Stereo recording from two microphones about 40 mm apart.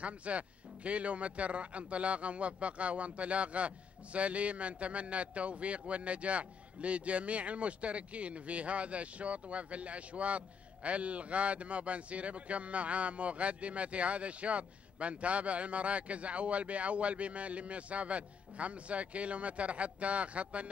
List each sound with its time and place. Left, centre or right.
0.0 s speech: right